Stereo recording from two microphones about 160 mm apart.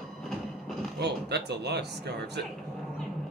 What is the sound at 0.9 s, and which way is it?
Speech, 90° right.